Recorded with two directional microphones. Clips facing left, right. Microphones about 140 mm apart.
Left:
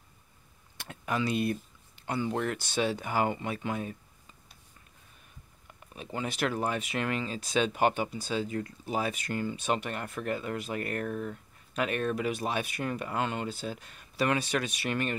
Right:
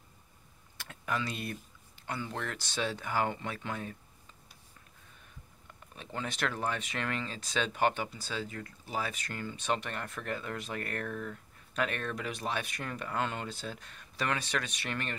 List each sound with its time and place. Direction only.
0.7 s speech: 20° left (ahead or behind)
5.9 s speech: 10° left (ahead or behind)